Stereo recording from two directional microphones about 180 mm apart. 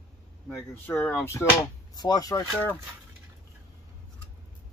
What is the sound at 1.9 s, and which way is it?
Speech, 20° left (ahead or behind).